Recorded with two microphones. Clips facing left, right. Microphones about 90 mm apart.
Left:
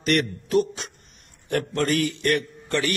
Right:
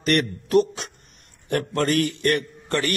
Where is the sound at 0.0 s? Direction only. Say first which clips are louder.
Right 1 dB; 55° right (ahead or behind).